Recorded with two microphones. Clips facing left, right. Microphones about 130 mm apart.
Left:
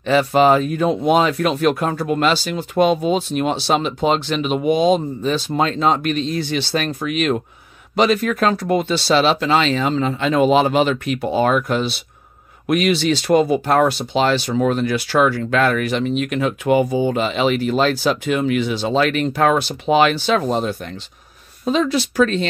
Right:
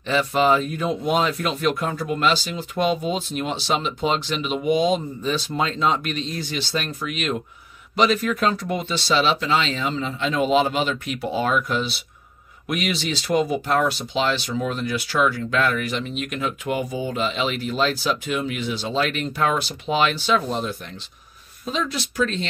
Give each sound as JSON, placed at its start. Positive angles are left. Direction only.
{"t": 0.0, "sound": "speech", "side_deg": 55}
{"t": 18.5, "sound": "speech", "side_deg": 65}
{"t": 21.6, "sound": "speech", "side_deg": 65}